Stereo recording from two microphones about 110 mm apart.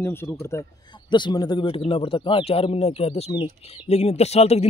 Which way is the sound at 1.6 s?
55° left (ahead or behind).